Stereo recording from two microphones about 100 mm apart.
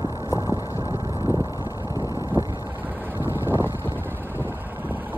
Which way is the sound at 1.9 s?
35° left (ahead or behind).